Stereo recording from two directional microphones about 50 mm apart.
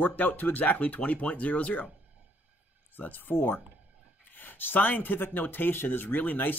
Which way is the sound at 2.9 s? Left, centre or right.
Left.